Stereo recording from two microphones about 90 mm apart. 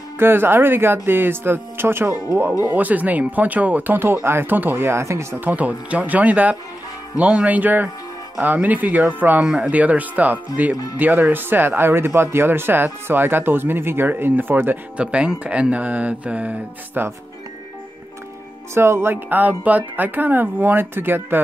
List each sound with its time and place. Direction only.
0.2 s speech: 25° right (ahead or behind)
18.8 s speech: 30° right (ahead or behind)